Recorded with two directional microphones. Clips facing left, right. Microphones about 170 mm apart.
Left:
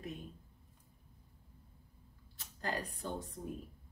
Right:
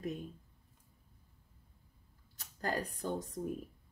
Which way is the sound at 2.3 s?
45° right (ahead or behind).